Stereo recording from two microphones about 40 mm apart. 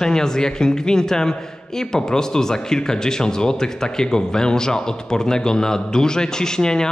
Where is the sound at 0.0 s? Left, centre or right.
Centre.